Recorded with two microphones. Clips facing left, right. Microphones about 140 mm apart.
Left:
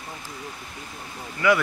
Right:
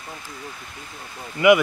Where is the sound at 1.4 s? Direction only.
15° right (ahead or behind).